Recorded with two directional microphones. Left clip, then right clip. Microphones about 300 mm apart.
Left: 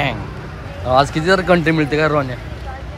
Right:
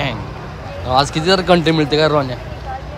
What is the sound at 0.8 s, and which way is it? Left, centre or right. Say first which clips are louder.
Speech: left 1 dB; centre.